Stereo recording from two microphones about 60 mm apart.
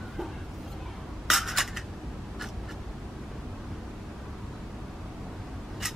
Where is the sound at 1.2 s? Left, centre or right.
Centre.